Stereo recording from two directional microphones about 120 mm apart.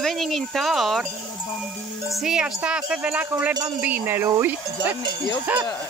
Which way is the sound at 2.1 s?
5° right (ahead or behind).